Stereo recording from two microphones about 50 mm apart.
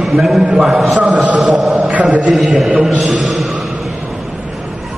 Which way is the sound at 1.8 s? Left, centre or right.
Right.